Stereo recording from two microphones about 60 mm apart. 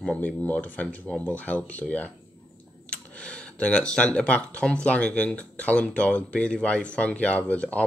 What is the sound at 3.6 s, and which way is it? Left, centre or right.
Speech, centre.